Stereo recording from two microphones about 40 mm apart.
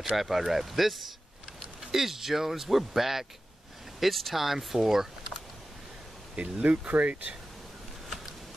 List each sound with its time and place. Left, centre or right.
0.1 s speech: centre
6.3 s speech: right
6.6 s speech: right